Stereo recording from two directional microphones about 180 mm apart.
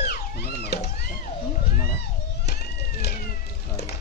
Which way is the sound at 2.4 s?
60° left (ahead or behind).